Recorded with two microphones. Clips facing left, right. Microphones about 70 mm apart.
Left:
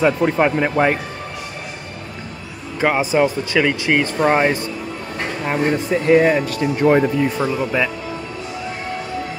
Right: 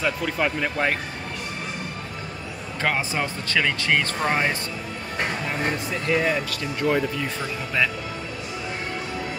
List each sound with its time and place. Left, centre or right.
0.0 s speech: left
2.8 s speech: centre
5.5 s speech: left